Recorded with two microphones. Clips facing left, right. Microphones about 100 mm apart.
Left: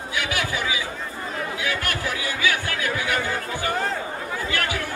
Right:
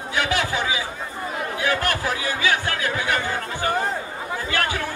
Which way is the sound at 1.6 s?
40° right (ahead or behind).